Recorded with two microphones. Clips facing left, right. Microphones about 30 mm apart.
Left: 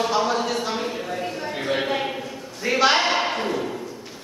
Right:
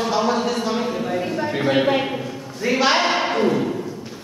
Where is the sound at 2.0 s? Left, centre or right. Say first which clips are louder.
Right 3 dB; centre.